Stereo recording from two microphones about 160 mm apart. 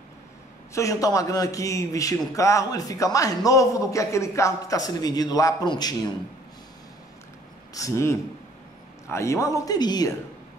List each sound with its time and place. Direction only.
0.7 s a man's voice: 20° left (ahead or behind)
7.7 s a man's voice: 20° left (ahead or behind)